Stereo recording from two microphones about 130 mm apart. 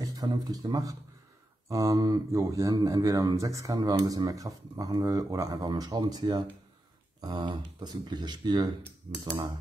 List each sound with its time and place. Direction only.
0.0 s speech: 30° right (ahead or behind)